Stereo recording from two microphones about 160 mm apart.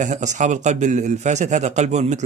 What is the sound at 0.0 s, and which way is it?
Speech, 50° right (ahead or behind).